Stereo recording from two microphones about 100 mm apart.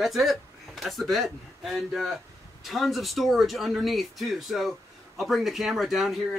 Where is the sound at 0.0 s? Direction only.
Centre (ahead or behind).